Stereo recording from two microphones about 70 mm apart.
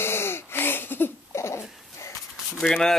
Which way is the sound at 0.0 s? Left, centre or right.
Left.